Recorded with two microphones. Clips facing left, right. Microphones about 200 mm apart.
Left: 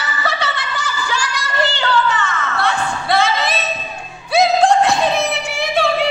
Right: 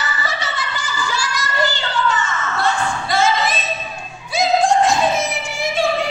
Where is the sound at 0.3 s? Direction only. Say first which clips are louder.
Left 3 dB; 60° left (ahead or behind).